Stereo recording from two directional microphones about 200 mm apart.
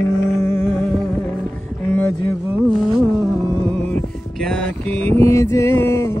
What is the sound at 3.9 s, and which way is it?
Mantra, 5° left (ahead or behind).